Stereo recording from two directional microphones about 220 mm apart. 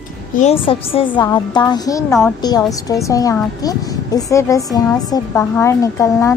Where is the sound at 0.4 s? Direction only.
25° left (ahead or behind).